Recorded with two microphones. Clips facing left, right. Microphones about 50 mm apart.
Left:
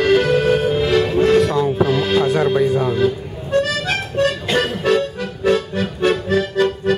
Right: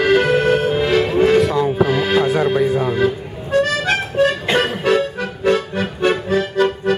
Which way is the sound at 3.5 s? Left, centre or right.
Centre.